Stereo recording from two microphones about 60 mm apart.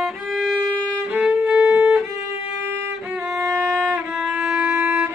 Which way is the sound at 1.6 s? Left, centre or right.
Centre.